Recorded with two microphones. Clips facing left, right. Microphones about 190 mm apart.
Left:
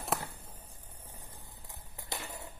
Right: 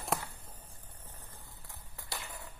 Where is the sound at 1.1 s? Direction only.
15° left (ahead or behind).